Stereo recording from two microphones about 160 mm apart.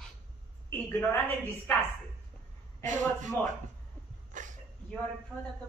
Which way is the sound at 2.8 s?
50° right (ahead or behind).